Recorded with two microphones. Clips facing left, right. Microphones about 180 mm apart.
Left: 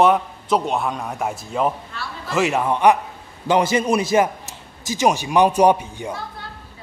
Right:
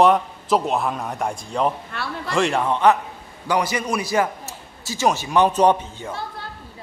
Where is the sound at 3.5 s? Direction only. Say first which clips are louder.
Left 5 dB; 25° left (ahead or behind).